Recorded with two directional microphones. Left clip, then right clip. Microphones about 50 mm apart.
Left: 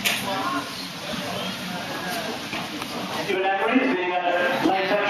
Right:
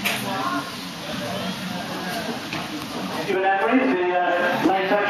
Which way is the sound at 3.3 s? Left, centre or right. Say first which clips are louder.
Right 2 dB; left.